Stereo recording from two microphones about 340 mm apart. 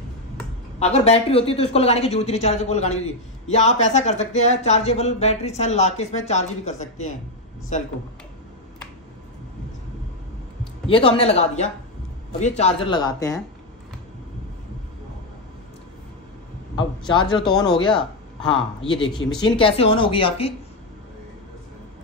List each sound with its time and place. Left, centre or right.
0.7 s speech: centre
10.6 s speech: centre
16.7 s speech: centre
17.4 s speech: centre
18.9 s speech: centre